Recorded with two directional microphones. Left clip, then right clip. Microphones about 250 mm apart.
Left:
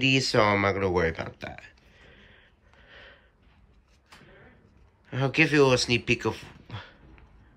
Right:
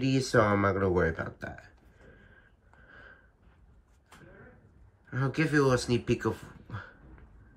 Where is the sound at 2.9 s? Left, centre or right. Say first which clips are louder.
Left 3 dB; centre.